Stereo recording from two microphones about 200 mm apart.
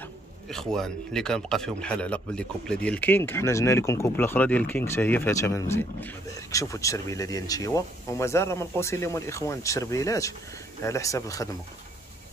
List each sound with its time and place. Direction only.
0.5 s speech: centre (ahead or behind)